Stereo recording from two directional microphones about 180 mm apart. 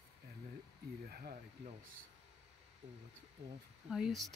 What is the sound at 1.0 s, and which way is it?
Speech, 55° right (ahead or behind).